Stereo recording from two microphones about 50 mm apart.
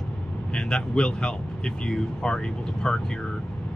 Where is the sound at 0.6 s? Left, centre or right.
Centre.